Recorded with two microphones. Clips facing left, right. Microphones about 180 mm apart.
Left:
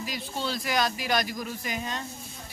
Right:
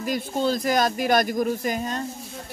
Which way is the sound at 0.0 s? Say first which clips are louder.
Right 9 dB; 50° right (ahead or behind).